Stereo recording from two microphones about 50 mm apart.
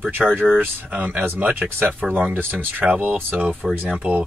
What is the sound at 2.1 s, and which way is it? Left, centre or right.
Speech, right.